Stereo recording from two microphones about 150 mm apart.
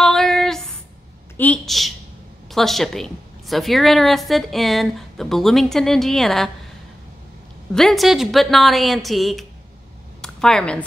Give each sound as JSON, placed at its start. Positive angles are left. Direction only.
{"t": 0.0, "sound": "a sound", "side_deg": 5}
{"t": 1.7, "sound": "a woman's voice", "side_deg": 0}
{"t": 7.7, "sound": "a woman's voice", "side_deg": 0}